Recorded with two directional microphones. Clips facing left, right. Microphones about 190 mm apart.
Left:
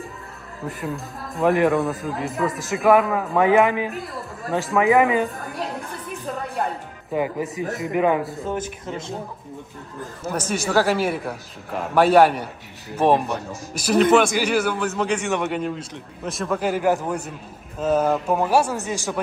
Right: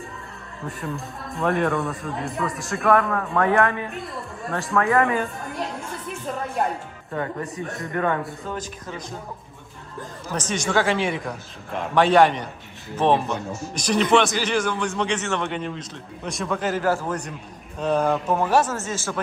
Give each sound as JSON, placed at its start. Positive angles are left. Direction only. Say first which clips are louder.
{"t": 0.7, "sound": "a man's voice", "louder": "left 2 dB", "side_deg": 0}
{"t": 7.1, "sound": "a man's voice", "louder": "left 4 dB", "side_deg": 5}
{"t": 8.5, "sound": "speech", "louder": "left 4 dB", "side_deg": 20}
{"t": 10.2, "sound": "a man's voice", "louder": "left 2 dB", "side_deg": 10}
{"t": 17.7, "sound": "a man's voice", "louder": "left 2 dB", "side_deg": 5}